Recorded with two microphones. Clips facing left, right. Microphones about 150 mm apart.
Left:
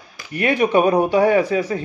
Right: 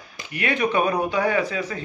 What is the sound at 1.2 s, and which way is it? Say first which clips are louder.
Speech: left 7 dB; 35° left (ahead or behind).